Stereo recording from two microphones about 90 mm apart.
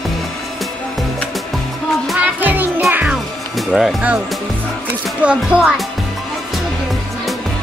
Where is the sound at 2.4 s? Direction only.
20° right (ahead or behind).